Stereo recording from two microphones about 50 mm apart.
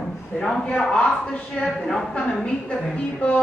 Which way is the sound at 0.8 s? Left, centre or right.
Centre.